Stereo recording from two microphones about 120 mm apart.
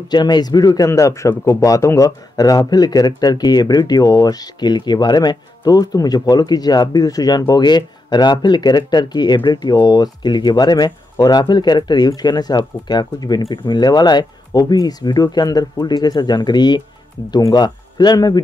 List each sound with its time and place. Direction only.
0.1 s speech: 35° left (ahead or behind)